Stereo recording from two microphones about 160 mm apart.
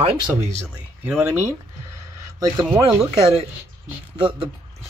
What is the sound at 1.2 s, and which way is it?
Speech, 15° right (ahead or behind).